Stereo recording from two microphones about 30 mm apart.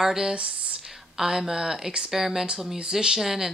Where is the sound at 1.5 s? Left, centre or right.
Centre.